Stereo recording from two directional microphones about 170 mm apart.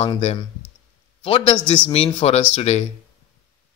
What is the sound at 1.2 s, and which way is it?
Speech, 35° left (ahead or behind).